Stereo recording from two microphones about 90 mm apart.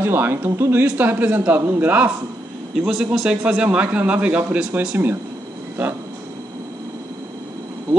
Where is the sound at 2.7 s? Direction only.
5° right (ahead or behind).